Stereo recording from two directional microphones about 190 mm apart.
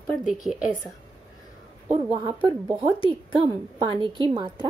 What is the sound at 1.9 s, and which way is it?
A woman's voice, 25° right (ahead or behind).